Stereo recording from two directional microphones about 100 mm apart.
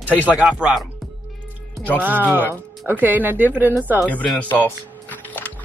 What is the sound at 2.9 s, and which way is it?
Speech, 20° right (ahead or behind).